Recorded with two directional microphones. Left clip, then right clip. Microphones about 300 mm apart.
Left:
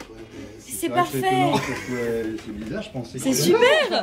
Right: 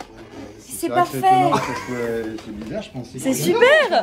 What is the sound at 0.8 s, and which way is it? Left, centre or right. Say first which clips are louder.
A woman's voice: right 4 dB; centre.